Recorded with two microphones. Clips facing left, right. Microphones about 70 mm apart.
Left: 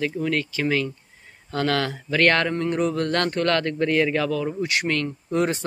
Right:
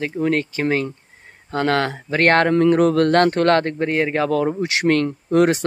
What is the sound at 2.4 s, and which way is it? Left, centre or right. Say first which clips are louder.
Speech: right 8 dB; right.